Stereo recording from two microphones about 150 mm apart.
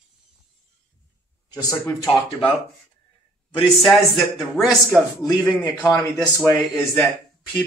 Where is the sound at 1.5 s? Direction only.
20° left (ahead or behind).